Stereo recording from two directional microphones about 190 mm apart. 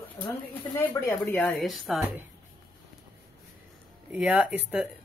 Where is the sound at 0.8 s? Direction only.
15° left (ahead or behind).